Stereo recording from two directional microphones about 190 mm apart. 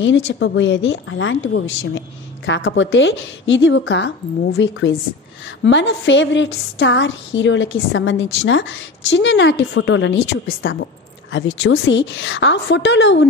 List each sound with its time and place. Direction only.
0.0 s a woman's voice: 75° left (ahead or behind)
11.3 s a woman's voice: 75° left (ahead or behind)